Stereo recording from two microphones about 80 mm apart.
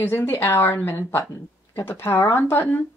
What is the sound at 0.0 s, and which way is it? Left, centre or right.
Speech, left.